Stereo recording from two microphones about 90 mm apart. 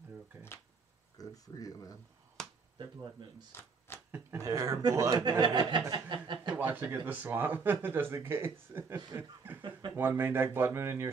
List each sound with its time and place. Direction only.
1.1 s speech: 40° left (ahead or behind)
2.4 s finger snapping: 5° left (ahead or behind)
2.8 s speech: 50° right (ahead or behind)
3.5 s shuffling cards: 25° left (ahead or behind)
4.4 s speech: 35° right (ahead or behind)
5.4 s chuckle: 55° right (ahead or behind)
6.5 s speech: 20° right (ahead or behind)
9.1 s speech: 40° right (ahead or behind)
9.6 s chuckle: 60° right (ahead or behind)
9.9 s speech: 25° right (ahead or behind)